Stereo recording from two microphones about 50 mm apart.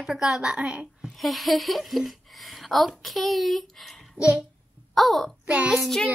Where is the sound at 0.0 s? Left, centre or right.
Centre.